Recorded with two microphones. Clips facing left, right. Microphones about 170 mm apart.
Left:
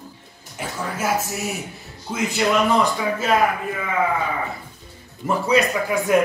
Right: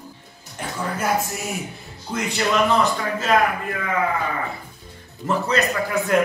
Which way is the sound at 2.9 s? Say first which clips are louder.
Left 2 dB; 10° left (ahead or behind).